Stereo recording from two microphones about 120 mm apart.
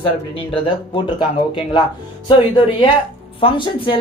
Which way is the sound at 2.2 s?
45° left (ahead or behind).